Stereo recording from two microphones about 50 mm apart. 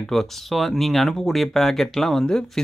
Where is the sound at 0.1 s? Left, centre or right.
Centre.